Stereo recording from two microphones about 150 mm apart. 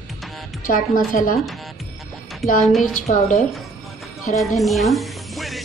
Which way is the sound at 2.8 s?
55° left (ahead or behind).